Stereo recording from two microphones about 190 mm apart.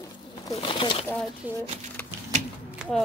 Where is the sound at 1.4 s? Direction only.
10° right (ahead or behind).